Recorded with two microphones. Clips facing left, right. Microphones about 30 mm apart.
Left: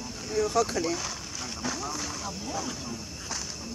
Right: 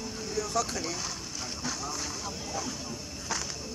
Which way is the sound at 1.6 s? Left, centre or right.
Centre.